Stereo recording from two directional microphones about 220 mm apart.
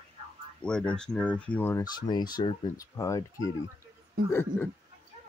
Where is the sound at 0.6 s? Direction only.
5° left (ahead or behind).